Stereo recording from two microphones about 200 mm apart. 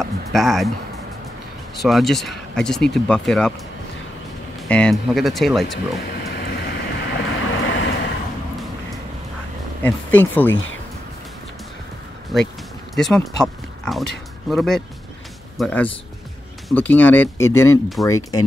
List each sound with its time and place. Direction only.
0.0 s a sound: centre (ahead or behind)
1.8 s speech: centre (ahead or behind)
4.6 s speech: 5° left (ahead or behind)
6.2 s vehicle: 60° left (ahead or behind)
9.8 s speech: 10° left (ahead or behind)
12.3 s speech: centre (ahead or behind); by 18.1 s 15° left (ahead or behind)